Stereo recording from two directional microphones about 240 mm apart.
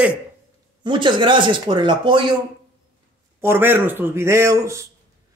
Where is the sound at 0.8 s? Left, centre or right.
Centre.